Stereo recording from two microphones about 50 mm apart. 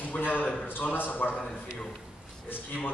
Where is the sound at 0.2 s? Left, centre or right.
Left.